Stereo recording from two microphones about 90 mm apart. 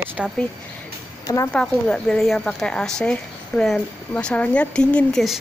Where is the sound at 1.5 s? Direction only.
10° left (ahead or behind).